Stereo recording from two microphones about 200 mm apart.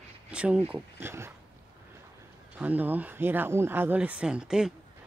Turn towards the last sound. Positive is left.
turn(degrees=-5)  # may be behind; listen again after turning